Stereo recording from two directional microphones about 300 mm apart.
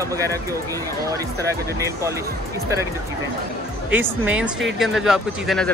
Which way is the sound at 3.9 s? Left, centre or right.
Centre.